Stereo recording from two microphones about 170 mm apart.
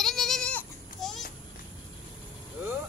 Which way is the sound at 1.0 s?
Centre (ahead or behind).